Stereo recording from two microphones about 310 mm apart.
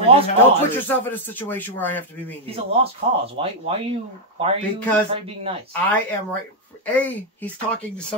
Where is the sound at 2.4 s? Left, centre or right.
Centre.